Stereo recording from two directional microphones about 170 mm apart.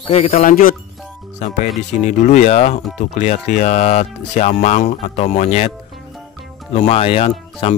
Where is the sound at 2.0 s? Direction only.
45° left (ahead or behind).